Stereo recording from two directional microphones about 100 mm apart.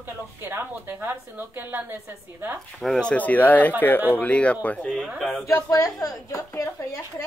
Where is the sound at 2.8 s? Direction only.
5° left (ahead or behind).